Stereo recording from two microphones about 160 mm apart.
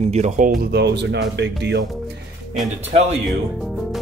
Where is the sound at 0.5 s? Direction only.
85° right.